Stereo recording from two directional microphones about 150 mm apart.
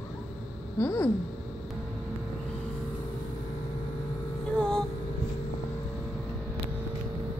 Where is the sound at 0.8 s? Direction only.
20° left (ahead or behind).